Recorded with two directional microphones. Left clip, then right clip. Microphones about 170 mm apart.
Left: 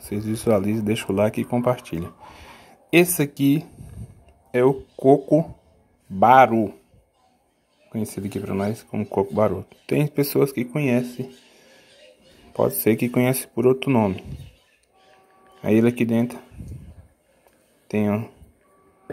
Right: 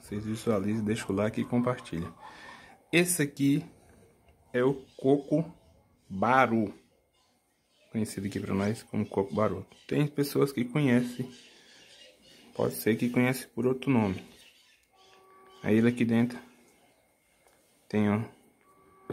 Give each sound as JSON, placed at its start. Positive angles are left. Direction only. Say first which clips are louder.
{"t": 0.0, "sound": "speech", "louder": "left 8 dB", "side_deg": 25}
{"t": 1.5, "sound": "a sound", "louder": "left 8 dB", "side_deg": 15}
{"t": 3.2, "sound": "speech", "louder": "left 7 dB", "side_deg": 20}
{"t": 7.9, "sound": "speech", "louder": "left 5 dB", "side_deg": 10}
{"t": 9.6, "sound": "speech", "louder": "left 7 dB", "side_deg": 25}
{"t": 12.5, "sound": "speech", "louder": "left 8 dB", "side_deg": 20}
{"t": 13.8, "sound": "speech", "louder": "left 8 dB", "side_deg": 10}
{"t": 15.6, "sound": "speech", "louder": "left 7 dB", "side_deg": 15}
{"t": 17.8, "sound": "speech", "louder": "left 6 dB", "side_deg": 10}